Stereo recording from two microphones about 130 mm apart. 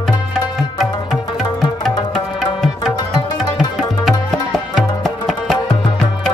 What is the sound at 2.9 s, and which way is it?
Music, 30° left (ahead or behind).